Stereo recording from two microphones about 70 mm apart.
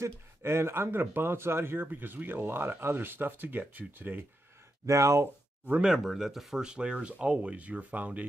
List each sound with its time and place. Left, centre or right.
0.0 s speech: right
4.8 s speech: right
5.7 s speech: centre